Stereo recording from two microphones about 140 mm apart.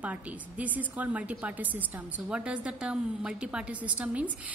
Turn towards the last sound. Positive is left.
turn(degrees=-10)  # may be behind; listen again after turning